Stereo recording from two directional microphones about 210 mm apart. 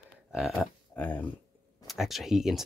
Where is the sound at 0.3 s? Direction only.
Centre (ahead or behind).